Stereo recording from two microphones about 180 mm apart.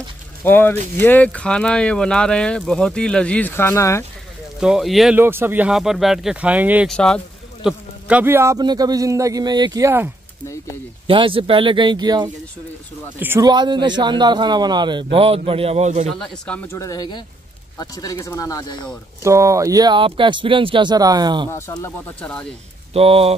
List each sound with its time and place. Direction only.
0.4 s speech: 10° left (ahead or behind)
4.6 s speech: 5° right (ahead or behind)
5.2 s speech: 10° right (ahead or behind)
6.9 s speech: 5° left (ahead or behind)
7.6 s speech: 10° right (ahead or behind)
11.1 s speech: 30° right (ahead or behind)
13.2 s speech: 10° right (ahead or behind)
13.5 s a man's voice: 25° right (ahead or behind)
16.1 s speech: 5° left (ahead or behind)
19.2 s speech: 15° right (ahead or behind)
21.5 s speech: 15° left (ahead or behind)
22.9 s a man's voice: 35° right (ahead or behind)